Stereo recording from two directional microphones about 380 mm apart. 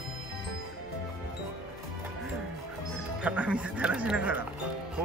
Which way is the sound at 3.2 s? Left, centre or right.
Centre.